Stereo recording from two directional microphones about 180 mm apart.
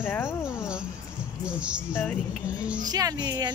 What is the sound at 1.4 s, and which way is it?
Speech, 5° right (ahead or behind).